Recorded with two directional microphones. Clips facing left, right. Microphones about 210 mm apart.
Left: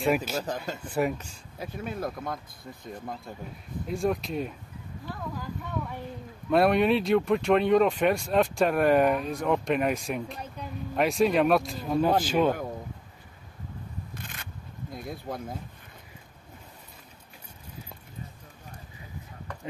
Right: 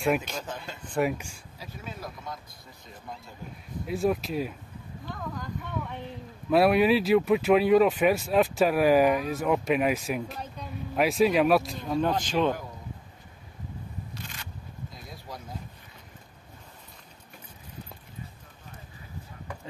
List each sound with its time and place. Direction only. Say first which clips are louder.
0.0 s speech: left 1 dB; 5° left (ahead or behind)
0.4 s speech: left 5 dB; 40° left (ahead or behind)
0.8 s speech: right 1 dB; 5° left (ahead or behind)
1.1 s speech: right 2 dB; 10° right (ahead or behind)
1.6 s speech: left 7 dB; 55° left (ahead or behind)
3.8 s speech: right 1 dB; 5° right (ahead or behind)
14.1 s scrape: even; 50° left (ahead or behind)